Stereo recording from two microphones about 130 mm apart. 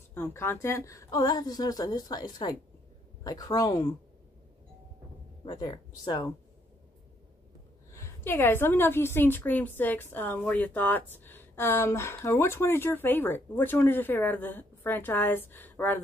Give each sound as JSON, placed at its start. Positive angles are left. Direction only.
{"t": 0.1, "sound": "speech", "side_deg": 20}
{"t": 5.4, "sound": "speech", "side_deg": 35}
{"t": 7.9, "sound": "a woman's voice", "side_deg": 20}